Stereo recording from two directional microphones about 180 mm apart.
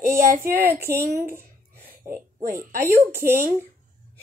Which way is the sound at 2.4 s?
50° right (ahead or behind).